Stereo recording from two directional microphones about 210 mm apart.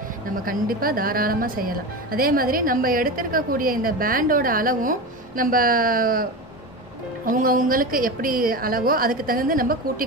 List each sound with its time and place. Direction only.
0.5 s speech: 45° right (ahead or behind)
7.3 s speech: 40° right (ahead or behind)